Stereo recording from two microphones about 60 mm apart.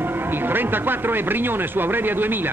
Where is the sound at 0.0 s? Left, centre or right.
Right.